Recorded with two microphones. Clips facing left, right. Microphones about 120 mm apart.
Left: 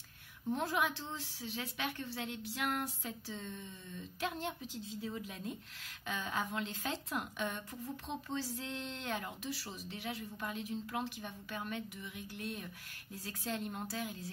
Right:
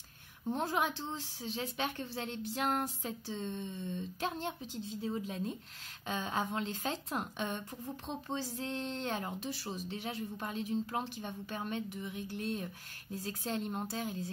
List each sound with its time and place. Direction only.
0.5 s speech: 30° right (ahead or behind)